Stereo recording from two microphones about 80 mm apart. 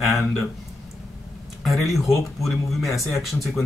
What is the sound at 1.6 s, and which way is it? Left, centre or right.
Speech, centre.